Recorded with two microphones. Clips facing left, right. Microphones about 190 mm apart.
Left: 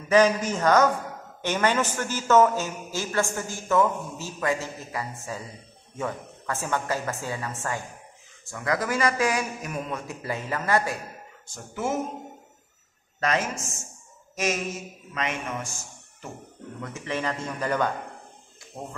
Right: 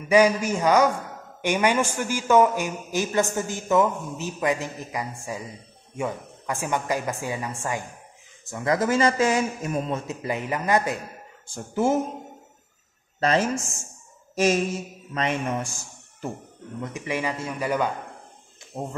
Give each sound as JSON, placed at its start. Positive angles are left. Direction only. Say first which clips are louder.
{"t": 0.1, "sound": "a man's voice", "louder": "right 1 dB", "side_deg": -10}
{"t": 11.4, "sound": "speech", "louder": "right 7 dB", "side_deg": -30}
{"t": 13.2, "sound": "speech", "louder": "right 4 dB", "side_deg": -30}
{"t": 16.8, "sound": "a man's voice", "louder": "right 2 dB", "side_deg": -15}
{"t": 18.8, "sound": "a man's voice", "louder": "right 5 dB", "side_deg": -25}